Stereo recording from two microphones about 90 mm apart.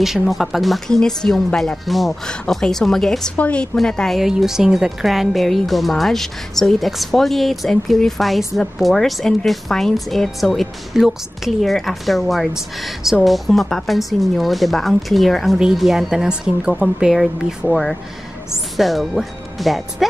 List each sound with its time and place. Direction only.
0.0 s a woman's voice: 5° right (ahead or behind)
3.3 s a woman's voice: 15° left (ahead or behind)
3.7 s a woman's voice: 5° left (ahead or behind)